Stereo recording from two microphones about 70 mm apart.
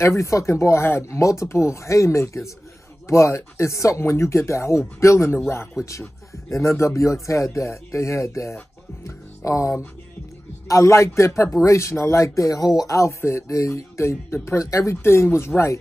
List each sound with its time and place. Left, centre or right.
0.0 s a man's voice: left
5.8 s speech: centre
6.8 s a man's voice: left
15.3 s speech: left